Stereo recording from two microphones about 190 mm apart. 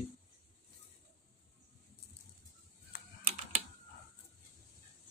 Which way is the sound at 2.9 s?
55° left (ahead or behind).